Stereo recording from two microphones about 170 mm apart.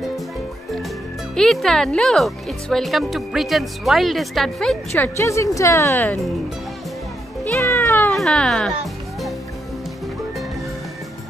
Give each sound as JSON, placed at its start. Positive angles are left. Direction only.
{"t": 1.3, "sound": "speech", "side_deg": 5}
{"t": 7.6, "sound": "cat", "side_deg": 15}
{"t": 8.2, "sound": "speech", "side_deg": 0}